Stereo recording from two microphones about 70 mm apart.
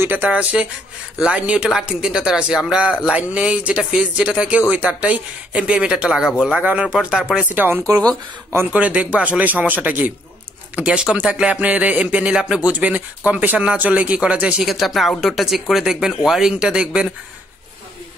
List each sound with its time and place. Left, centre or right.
0.0 s speech: right
7.4 s speech: right
10.8 s speech: centre
14.6 s speech: centre